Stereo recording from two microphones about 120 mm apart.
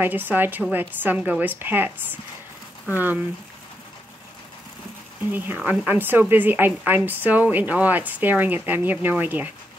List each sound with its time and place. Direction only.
0.0 s a woman's voice: 15° right (ahead or behind)
5.3 s a woman's voice: 15° right (ahead or behind)